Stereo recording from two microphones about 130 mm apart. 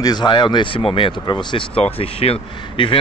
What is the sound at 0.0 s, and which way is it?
Speech, 35° left (ahead or behind).